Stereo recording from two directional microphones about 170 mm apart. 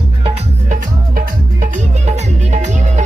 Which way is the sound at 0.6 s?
50° right (ahead or behind).